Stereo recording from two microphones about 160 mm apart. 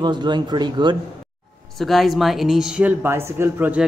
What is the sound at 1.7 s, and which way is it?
Speech, centre (ahead or behind).